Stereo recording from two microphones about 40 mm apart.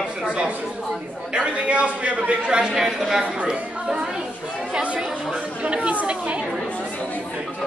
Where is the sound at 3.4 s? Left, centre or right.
Right.